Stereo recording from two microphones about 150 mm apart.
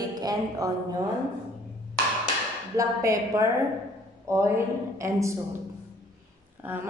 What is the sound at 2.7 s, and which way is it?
Speech, 20° right (ahead or behind).